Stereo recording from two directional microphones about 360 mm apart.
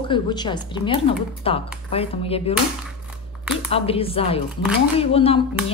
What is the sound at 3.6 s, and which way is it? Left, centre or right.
A woman's voice, centre.